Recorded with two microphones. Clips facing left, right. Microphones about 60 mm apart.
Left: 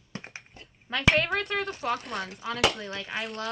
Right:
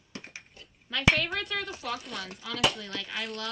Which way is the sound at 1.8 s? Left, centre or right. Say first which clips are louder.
Left 6 dB; left.